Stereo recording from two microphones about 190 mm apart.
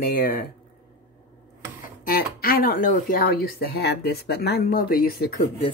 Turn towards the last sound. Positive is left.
turn(degrees=50)  # may be behind; listen again after turning